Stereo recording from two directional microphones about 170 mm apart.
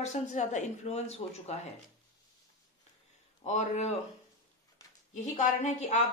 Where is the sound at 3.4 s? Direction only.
45° left (ahead or behind).